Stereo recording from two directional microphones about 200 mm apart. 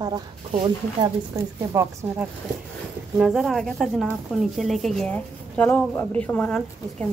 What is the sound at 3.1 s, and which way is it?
Speech, centre (ahead or behind).